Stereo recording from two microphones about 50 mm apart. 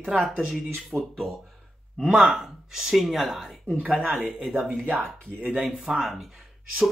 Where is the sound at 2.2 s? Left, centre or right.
Centre.